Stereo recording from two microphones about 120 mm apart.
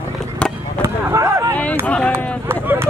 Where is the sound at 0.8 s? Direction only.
25° right (ahead or behind).